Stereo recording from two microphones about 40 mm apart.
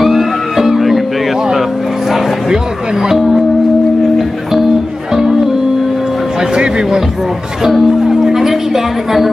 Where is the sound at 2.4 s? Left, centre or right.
Centre.